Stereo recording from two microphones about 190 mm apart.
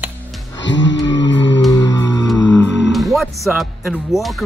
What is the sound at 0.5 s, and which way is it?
Music, 70° left (ahead or behind).